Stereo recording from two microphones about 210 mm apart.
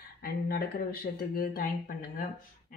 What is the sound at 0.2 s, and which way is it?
Speech, 45° left (ahead or behind).